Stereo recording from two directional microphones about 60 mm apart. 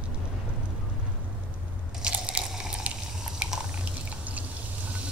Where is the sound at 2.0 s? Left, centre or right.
Centre.